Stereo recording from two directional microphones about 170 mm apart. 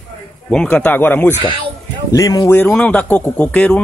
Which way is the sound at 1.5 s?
30° right (ahead or behind).